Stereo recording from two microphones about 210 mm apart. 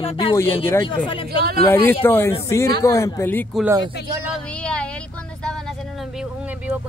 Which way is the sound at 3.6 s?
15° right (ahead or behind).